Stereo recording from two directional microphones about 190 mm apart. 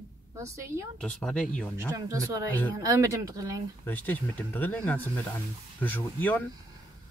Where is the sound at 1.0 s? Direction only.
5° left (ahead or behind).